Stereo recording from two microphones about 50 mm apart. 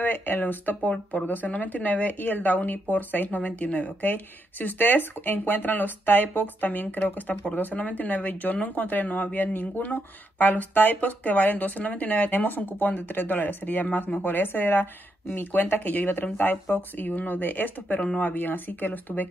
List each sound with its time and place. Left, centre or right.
0.0 s speech: left
0.8 s speech: left
1.2 s speech: left
18.0 s speech: left
18.3 s speech: left